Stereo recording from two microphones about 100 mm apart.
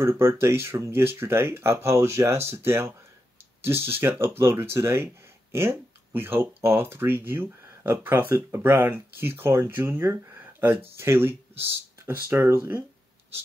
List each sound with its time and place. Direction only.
0.0 s speech: 25° right (ahead or behind)